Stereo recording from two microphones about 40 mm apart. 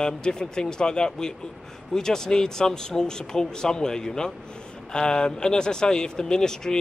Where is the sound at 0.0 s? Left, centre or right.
Centre.